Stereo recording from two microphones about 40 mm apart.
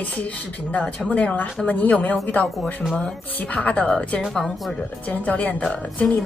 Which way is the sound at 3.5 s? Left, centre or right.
Left.